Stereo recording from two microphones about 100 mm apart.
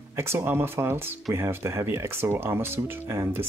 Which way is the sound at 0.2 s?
25° right (ahead or behind).